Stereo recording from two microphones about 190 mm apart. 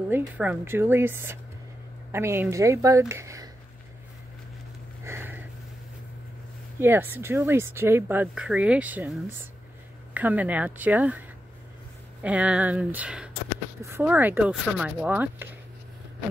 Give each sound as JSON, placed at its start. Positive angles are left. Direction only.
{"t": 0.1, "sound": "speech", "side_deg": -10}
{"t": 5.0, "sound": "a sound", "side_deg": -10}
{"t": 6.8, "sound": "speech", "side_deg": -10}